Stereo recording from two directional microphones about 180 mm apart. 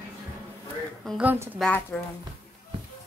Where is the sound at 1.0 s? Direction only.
5° right (ahead or behind).